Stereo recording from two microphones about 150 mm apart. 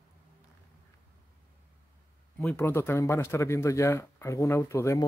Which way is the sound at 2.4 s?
10° left (ahead or behind).